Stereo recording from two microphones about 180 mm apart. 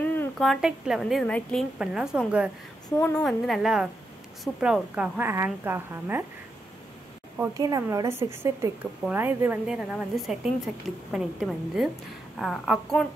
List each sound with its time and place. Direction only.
0.1 s a sound: 10° left (ahead or behind)
0.5 s a woman's voice: 5° right (ahead or behind)
7.5 s a woman's voice: 20° right (ahead or behind); by 13.0 s centre (ahead or behind)